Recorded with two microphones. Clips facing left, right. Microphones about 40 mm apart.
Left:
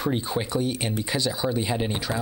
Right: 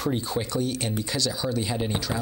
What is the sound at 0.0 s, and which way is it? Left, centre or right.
Speech, centre.